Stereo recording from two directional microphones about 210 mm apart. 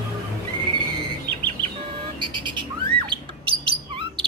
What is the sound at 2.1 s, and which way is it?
Squawk, 20° right (ahead or behind).